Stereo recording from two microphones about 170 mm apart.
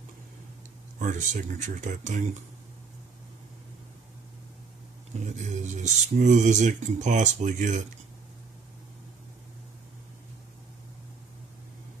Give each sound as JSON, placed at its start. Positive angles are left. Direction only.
{"t": 0.9, "sound": "speech", "side_deg": -50}
{"t": 5.2, "sound": "speech", "side_deg": -45}